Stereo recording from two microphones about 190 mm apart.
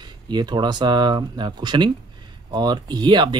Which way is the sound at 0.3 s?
25° right (ahead or behind).